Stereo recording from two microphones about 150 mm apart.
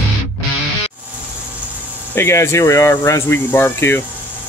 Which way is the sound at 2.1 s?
15° left (ahead or behind).